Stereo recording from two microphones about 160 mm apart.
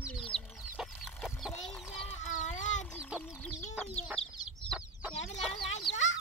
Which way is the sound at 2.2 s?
50° left (ahead or behind).